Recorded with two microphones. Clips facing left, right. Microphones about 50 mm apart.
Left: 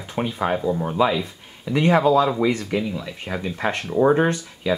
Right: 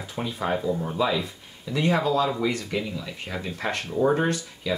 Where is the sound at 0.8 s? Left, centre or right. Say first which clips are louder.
Left 5 dB; left.